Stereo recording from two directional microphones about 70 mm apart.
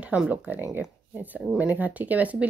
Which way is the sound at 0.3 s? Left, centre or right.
Right.